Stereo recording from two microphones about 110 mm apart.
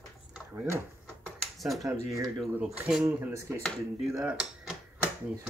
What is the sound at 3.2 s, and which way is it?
Speech, 20° right (ahead or behind).